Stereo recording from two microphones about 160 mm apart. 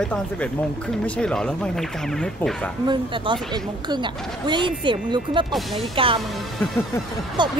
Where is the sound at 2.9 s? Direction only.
30° right (ahead or behind).